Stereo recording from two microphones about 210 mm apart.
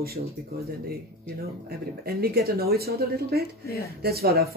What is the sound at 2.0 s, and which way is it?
Speech, 45° right (ahead or behind).